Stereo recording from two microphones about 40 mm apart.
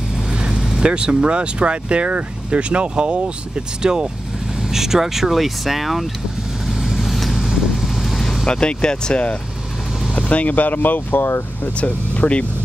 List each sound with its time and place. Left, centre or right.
0.3 s vehicle: right
0.6 s speech: centre
6.6 s vehicle: centre
8.5 s speech: left
10.3 s speech: left
11.2 s speech: left
11.7 s speech: left